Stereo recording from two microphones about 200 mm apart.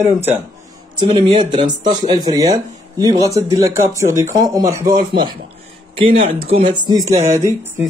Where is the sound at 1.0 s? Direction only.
25° right (ahead or behind).